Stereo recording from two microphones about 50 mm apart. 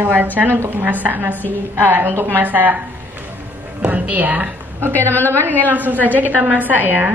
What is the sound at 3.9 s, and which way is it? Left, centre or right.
Speech, right.